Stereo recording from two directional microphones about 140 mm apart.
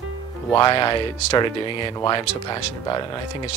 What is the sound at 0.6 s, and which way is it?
Speech, 35° left (ahead or behind).